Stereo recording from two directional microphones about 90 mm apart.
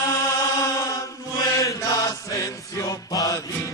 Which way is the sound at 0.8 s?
40° left (ahead or behind).